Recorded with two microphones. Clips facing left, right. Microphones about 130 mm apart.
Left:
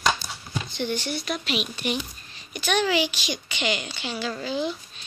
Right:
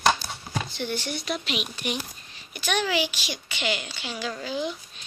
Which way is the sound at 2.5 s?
10° right (ahead or behind).